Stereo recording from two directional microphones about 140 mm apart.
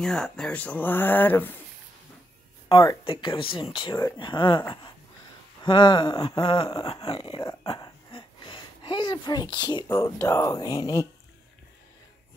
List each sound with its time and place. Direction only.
0.0 s speech: 5° left (ahead or behind)
3.1 s speech: 35° left (ahead or behind)